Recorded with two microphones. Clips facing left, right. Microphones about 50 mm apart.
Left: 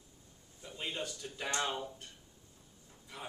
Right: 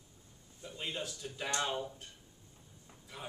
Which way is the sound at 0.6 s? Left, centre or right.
Centre.